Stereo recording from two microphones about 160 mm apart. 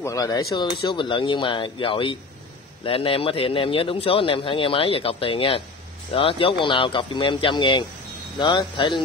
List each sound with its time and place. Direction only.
0.0 s speech: 20° left (ahead or behind)